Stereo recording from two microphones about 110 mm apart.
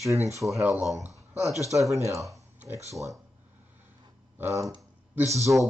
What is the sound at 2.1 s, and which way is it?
Speech, 30° right (ahead or behind).